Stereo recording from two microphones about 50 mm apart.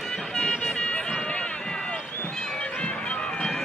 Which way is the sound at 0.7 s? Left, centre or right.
Left.